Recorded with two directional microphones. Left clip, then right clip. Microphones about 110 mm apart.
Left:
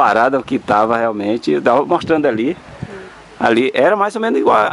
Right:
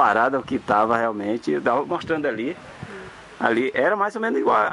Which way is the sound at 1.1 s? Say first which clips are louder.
Left 7 dB; 15° left (ahead or behind).